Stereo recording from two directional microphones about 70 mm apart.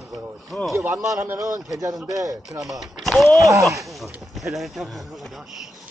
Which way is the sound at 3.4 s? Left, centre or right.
Right.